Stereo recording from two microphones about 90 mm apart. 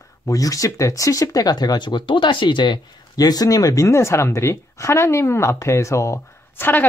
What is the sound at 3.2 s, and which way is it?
Speech, 45° left (ahead or behind).